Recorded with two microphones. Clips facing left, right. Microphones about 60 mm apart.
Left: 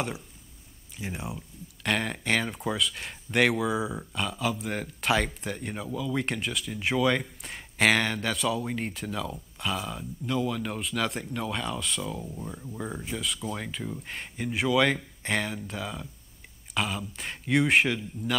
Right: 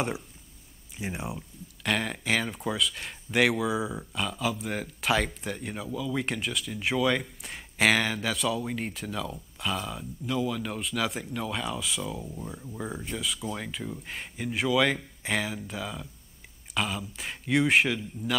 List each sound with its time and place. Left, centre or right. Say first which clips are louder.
0.9 s speech: right 2 dB; centre
1.8 s speech: even; centre